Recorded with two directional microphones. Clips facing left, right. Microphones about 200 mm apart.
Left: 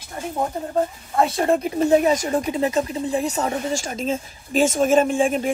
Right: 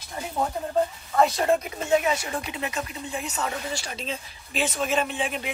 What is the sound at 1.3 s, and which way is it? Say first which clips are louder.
Speech: left 4 dB; 35° left (ahead or behind).